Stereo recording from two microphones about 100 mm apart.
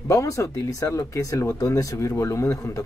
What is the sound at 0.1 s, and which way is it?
Speech, 30° left (ahead or behind).